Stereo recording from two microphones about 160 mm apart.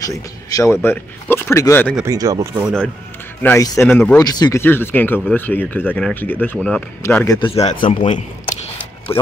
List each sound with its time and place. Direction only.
0.0 s speech: 20° left (ahead or behind)
2.0 s speech: 25° right (ahead or behind)
3.4 s speech: 20° left (ahead or behind)
4.2 s speech: 25° left (ahead or behind)
7.3 s a man's voice: 30° left (ahead or behind)